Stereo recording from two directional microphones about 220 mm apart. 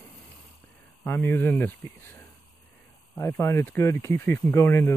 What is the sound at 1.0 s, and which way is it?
Speech, 10° left (ahead or behind).